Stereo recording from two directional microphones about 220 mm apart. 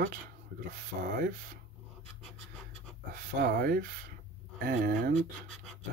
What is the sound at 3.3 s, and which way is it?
Speech, 40° right (ahead or behind).